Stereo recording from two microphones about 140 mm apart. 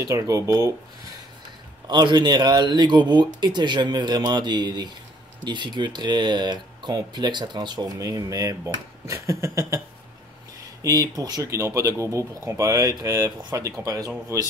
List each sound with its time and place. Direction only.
0.0 s speech: 20° right (ahead or behind)
1.9 s speech: 30° right (ahead or behind)
10.8 s speech: 25° right (ahead or behind)